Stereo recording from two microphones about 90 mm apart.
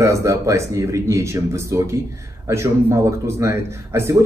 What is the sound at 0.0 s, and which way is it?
A man's voice, 35° right (ahead or behind).